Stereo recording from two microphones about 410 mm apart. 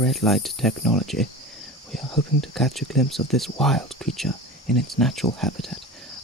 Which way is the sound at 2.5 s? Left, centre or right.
Centre.